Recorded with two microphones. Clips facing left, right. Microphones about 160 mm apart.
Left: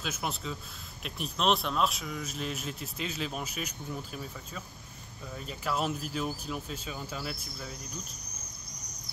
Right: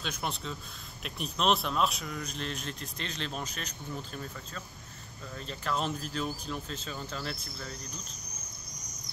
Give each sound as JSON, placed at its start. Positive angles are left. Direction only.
{"t": 0.0, "sound": "speech", "side_deg": 5}